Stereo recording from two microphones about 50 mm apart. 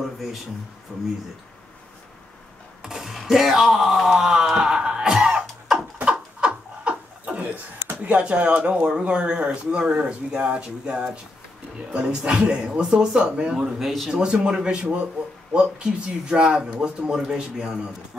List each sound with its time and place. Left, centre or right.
2.8 s speech: centre
4.6 s music: centre
6.4 s a sound: right
8.1 s speech: right